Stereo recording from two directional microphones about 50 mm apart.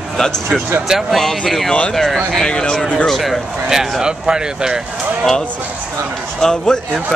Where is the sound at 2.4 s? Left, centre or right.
Centre.